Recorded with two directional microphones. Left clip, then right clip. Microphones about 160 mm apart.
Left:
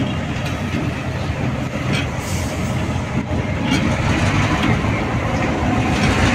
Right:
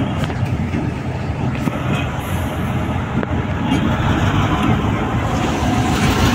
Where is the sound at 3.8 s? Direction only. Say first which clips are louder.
Right 1 dB; 30° left (ahead or behind).